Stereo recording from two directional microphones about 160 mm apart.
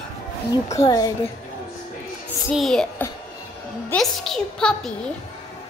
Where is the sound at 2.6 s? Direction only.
Centre (ahead or behind).